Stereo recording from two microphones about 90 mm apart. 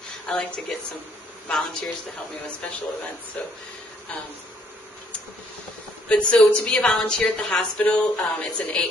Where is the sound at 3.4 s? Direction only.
15° left (ahead or behind).